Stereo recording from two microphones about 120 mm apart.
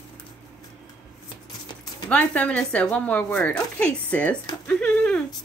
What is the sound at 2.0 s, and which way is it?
Speech, 10° left (ahead or behind).